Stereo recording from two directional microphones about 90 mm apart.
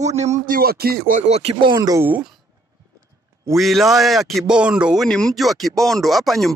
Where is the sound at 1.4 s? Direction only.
65° right (ahead or behind).